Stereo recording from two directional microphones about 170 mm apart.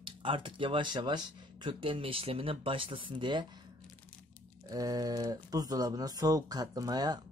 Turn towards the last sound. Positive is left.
turn(degrees=-25)  # may be behind; listen again after turning